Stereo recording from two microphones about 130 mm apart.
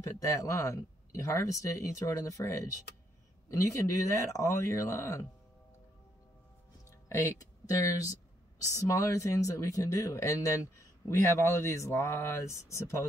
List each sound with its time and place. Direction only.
0.2 s speech: 25° left (ahead or behind)
7.1 s speech: 25° left (ahead or behind)